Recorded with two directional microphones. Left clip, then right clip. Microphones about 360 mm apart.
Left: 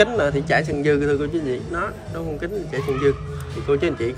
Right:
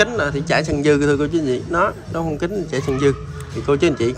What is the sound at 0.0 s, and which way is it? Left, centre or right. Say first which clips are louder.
Speech: even; centre.